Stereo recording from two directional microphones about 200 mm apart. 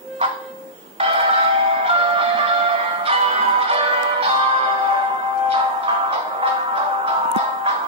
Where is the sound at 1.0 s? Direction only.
30° right (ahead or behind).